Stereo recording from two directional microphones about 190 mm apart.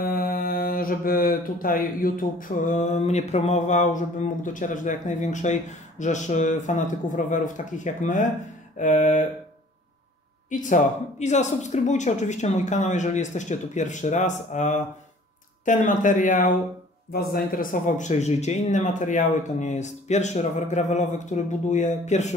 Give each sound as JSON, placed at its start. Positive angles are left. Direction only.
{"t": 0.0, "sound": "speech", "side_deg": 50}
{"t": 10.5, "sound": "speech", "side_deg": 40}